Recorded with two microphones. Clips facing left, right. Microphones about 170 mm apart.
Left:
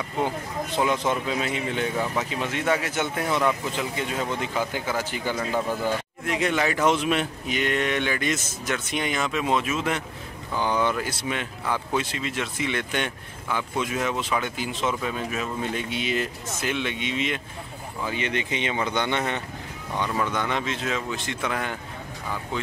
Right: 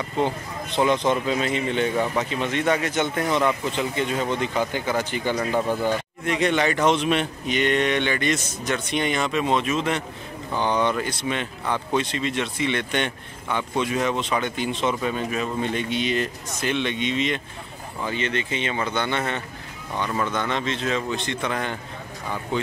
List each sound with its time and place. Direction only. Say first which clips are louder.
0.7 s speech: right 4 dB; 5° left (ahead or behind)
5.4 s speech: right 2 dB; 15° right (ahead or behind)
6.2 s a man's voice: right 3 dB; 5° left (ahead or behind)